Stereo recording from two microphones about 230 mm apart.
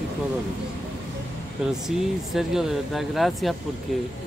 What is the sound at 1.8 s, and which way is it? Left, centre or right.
Speech, centre.